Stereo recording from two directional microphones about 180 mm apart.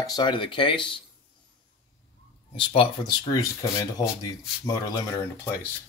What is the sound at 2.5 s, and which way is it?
Speech, 30° left (ahead or behind).